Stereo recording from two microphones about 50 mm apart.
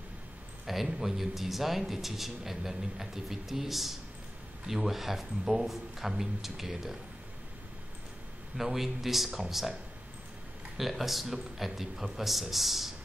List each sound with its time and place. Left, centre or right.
0.7 s speech: centre
8.5 s speech: centre
10.8 s speech: centre